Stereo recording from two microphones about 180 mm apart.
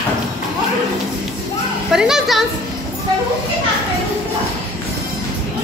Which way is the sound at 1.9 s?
5° right (ahead or behind).